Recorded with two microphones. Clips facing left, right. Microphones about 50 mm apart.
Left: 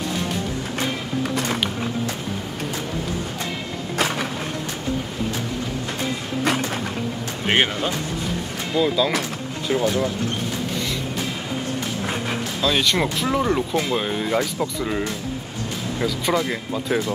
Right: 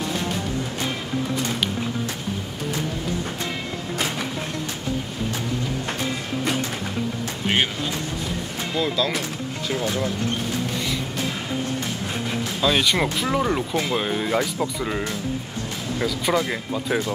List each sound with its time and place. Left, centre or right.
7.4 s speech: left
8.7 s speech: centre
12.6 s speech: centre